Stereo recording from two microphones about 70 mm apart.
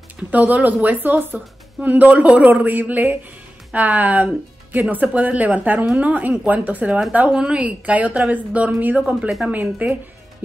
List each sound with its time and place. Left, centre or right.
0.3 s a woman's voice: right